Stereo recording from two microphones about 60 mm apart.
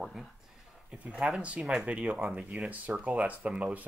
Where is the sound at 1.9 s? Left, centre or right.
Right.